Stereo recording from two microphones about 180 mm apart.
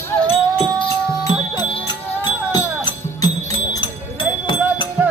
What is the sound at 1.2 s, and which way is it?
Music, 25° left (ahead or behind).